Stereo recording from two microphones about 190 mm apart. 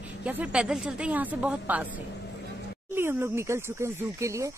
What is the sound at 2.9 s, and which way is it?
Speech, 15° right (ahead or behind).